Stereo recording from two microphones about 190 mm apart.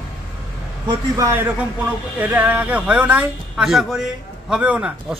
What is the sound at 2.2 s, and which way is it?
A man's voice, 10° right (ahead or behind).